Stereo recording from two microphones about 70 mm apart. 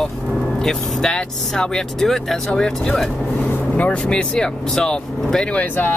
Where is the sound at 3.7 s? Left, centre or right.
Centre.